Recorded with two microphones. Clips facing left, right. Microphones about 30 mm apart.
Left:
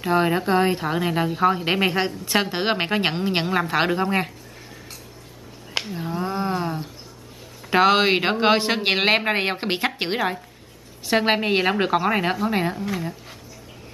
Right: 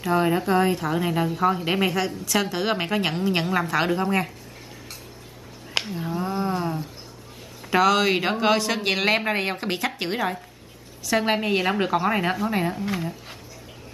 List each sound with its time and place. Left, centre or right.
0.0 s a woman's voice: left
5.7 s a sound: centre
5.9 s a woman's voice: centre